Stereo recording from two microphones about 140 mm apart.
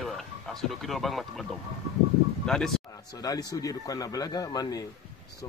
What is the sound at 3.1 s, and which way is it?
Speech, 25° left (ahead or behind).